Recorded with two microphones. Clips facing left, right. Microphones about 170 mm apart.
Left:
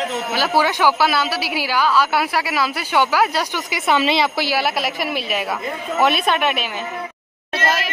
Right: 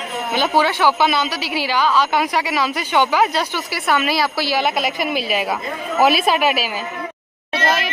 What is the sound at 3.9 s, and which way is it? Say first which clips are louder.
A woman's voice: left 1 dB; 20° left (ahead or behind).